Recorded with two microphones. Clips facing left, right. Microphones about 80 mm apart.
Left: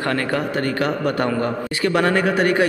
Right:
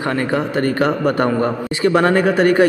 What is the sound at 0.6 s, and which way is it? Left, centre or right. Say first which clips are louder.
A man's voice: right 4 dB; right.